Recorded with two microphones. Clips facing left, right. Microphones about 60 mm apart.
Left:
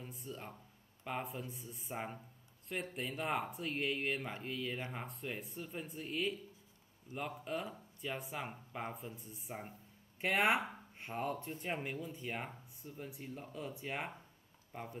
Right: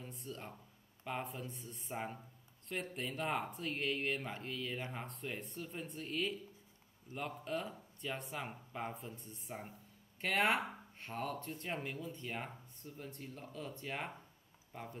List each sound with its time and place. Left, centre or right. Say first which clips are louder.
0.0 s speech: even; centre